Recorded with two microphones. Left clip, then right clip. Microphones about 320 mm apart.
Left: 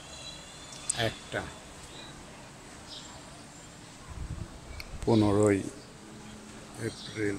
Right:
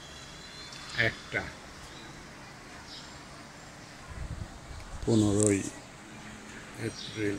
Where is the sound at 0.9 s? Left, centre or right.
Centre.